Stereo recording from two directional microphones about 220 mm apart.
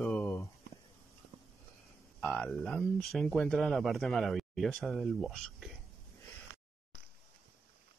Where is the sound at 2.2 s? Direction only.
Centre (ahead or behind).